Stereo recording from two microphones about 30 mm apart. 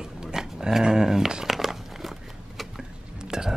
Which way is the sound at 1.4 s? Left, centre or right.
Centre.